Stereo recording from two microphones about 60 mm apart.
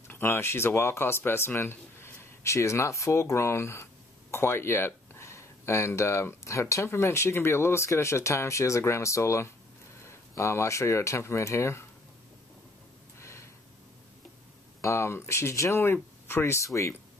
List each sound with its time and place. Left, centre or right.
0.1 s speech: left
13.2 s a sound: left
14.8 s speech: left
16.6 s speech: left